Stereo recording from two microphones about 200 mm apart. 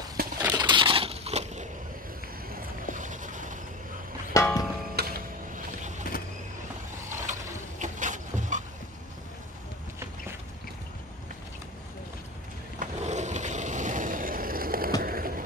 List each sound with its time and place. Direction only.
0.4 s crushing: 20° right (ahead or behind); by 1.7 s 35° right (ahead or behind)
2.5 s boat: 40° right (ahead or behind)
4.3 s music: 15° left (ahead or behind)
5.0 s music: 50° right (ahead or behind)
6.0 s vehicle: 45° left (ahead or behind)
7.1 s mechanisms: 40° right (ahead or behind)
7.8 s a sound: 40° right (ahead or behind)
12.7 s a sound: 35° right (ahead or behind)